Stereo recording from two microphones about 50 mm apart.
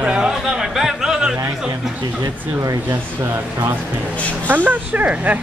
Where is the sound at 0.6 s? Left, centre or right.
Centre.